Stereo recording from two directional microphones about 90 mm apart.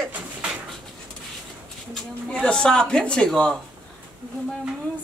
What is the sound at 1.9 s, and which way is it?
A man's voice, 5° left (ahead or behind).